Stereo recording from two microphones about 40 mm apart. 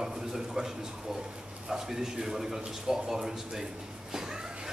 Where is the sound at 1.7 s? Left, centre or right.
Centre.